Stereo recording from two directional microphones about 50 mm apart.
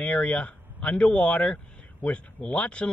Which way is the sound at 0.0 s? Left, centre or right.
Left.